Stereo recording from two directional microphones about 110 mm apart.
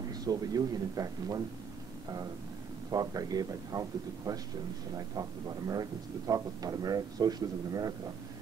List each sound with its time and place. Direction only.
0.1 s speech: 35° right (ahead or behind)
2.9 s speech: 35° right (ahead or behind)
5.7 s speech: 35° right (ahead or behind)